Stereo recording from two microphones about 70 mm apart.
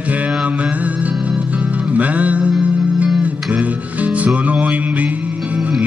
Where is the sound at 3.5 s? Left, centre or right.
Right.